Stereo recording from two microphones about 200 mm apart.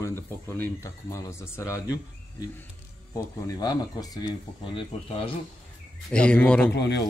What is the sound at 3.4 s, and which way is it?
Speech, 20° left (ahead or behind).